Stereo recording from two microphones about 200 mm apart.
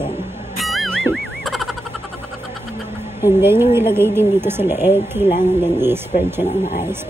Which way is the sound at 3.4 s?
10° right (ahead or behind).